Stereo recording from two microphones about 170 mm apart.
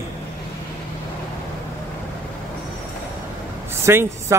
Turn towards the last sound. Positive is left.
turn(degrees=-15)  # may be behind; listen again after turning